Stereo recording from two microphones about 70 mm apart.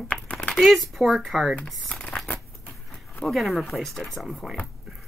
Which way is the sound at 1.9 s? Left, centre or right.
Centre.